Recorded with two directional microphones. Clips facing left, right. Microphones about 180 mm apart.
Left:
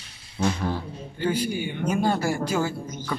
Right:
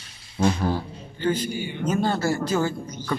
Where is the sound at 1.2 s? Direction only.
10° left (ahead or behind).